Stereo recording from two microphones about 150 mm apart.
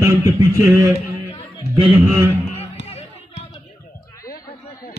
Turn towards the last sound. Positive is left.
turn(degrees=40)  # may be behind; listen again after turning